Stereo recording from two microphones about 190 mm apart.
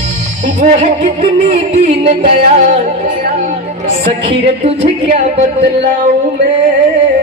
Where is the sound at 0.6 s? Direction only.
40° right (ahead or behind).